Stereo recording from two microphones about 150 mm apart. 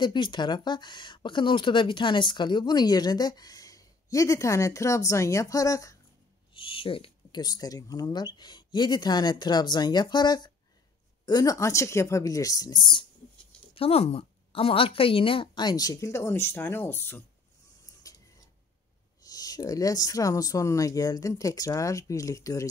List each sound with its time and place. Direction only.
0.0 s speech: 30° left (ahead or behind)
6.5 s speech: 35° left (ahead or behind)
13.7 s speech: 40° left (ahead or behind); by 17.2 s 15° left (ahead or behind)
18.1 s a sound: 25° left (ahead or behind)
19.2 s speech: 25° left (ahead or behind)